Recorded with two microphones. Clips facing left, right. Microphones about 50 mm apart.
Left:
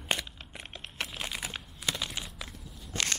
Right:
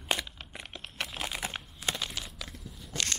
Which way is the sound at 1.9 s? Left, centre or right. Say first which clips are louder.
Even; right.